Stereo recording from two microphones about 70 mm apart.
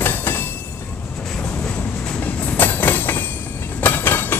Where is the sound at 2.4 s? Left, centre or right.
Left.